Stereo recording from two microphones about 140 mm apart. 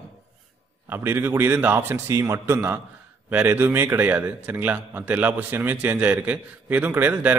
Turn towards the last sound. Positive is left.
turn(degrees=-10)  # may be behind; listen again after turning